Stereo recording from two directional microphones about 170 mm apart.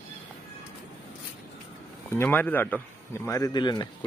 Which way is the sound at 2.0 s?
10° left (ahead or behind).